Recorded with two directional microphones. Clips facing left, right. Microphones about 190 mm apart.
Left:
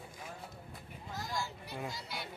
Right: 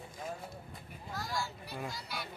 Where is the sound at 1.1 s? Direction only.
20° left (ahead or behind).